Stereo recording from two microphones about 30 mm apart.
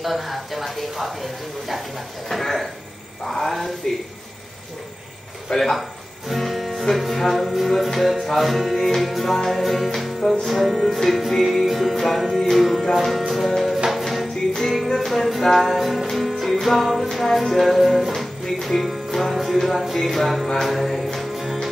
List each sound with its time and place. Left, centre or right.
0.0 s music: centre
3.3 s speech: centre
5.5 s speech: centre
6.2 s music: centre
8.7 s speech: centre
9.2 s music: centre
11.6 s music: centre
12.4 s music: centre
14.3 s music: centre
15.0 s music: centre
21.2 s music: centre